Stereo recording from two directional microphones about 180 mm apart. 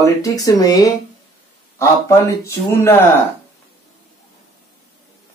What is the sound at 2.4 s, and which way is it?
Speech, 15° left (ahead or behind).